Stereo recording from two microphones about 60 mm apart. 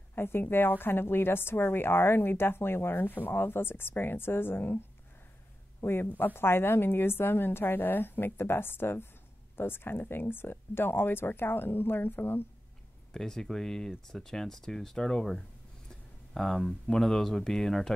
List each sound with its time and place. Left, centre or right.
0.1 s a woman's voice: left
5.8 s a woman's voice: left
13.1 s speech: centre
15.9 s a sound: centre
16.8 s speech: centre